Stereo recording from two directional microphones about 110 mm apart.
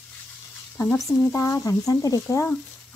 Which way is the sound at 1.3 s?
25° left (ahead or behind).